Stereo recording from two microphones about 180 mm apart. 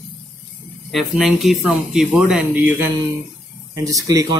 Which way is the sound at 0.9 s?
Centre (ahead or behind).